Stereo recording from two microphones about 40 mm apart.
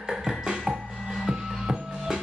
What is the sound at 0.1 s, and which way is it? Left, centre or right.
Music, centre.